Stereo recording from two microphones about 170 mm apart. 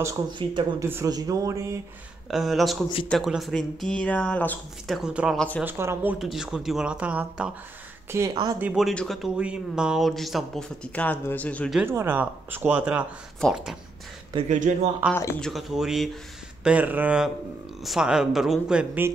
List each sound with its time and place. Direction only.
0.0 s speech: 25° right (ahead or behind)
0.8 s speech: 20° right (ahead or behind)
2.3 s speech: centre (ahead or behind)
4.9 s speech: 5° right (ahead or behind)
6.1 s speech: centre (ahead or behind)
8.1 s speech: 20° right (ahead or behind)
8.5 s speech: 5° right (ahead or behind)
11.8 s speech: 15° right (ahead or behind)
14.7 s speech: 50° right (ahead or behind)
15.0 s speech: 10° right (ahead or behind)